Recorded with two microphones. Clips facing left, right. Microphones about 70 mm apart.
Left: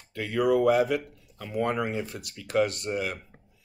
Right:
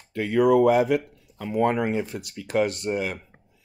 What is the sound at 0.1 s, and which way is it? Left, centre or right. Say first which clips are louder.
Speech: right 5 dB; right.